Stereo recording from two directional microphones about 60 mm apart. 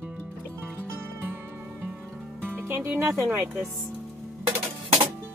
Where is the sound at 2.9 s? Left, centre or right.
Right.